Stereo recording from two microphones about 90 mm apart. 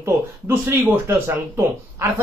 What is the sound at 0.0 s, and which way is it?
A man's voice, 25° right (ahead or behind).